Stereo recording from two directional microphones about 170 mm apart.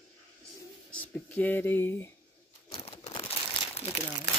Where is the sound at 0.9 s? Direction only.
10° left (ahead or behind).